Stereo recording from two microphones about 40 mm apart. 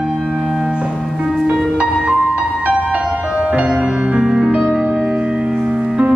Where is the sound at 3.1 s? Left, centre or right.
Centre.